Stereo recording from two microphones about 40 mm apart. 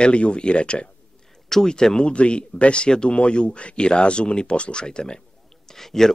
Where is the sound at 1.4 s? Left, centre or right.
Centre.